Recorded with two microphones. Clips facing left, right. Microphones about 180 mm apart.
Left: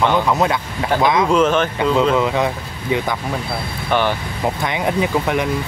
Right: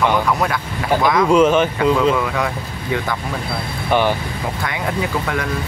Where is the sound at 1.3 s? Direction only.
10° right (ahead or behind).